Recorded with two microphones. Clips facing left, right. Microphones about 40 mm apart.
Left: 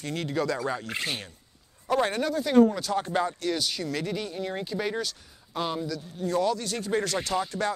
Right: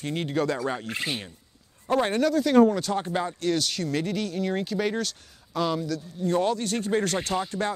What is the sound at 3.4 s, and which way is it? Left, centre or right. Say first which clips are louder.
Speech: right 3 dB; right.